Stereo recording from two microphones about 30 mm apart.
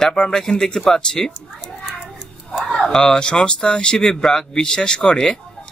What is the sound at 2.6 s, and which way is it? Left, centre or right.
Speech, centre.